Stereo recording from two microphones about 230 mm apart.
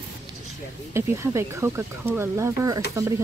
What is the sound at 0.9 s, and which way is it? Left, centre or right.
Speech, centre.